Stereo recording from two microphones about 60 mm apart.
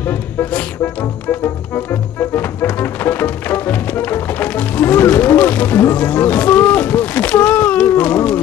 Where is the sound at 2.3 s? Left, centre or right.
Left.